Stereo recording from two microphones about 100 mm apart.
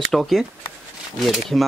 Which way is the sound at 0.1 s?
Centre (ahead or behind).